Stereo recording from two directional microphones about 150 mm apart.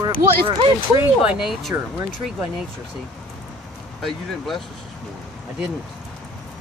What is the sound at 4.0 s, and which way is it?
Speech, centre (ahead or behind).